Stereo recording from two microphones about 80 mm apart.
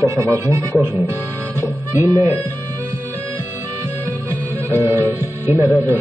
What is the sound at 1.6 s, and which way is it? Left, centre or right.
Music, right.